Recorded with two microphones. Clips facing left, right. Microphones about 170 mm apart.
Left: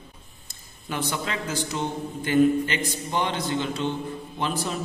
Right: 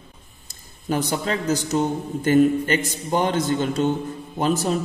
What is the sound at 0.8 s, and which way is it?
A man's voice, 40° right (ahead or behind).